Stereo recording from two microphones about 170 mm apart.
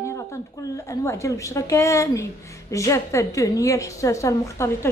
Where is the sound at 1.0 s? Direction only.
15° left (ahead or behind).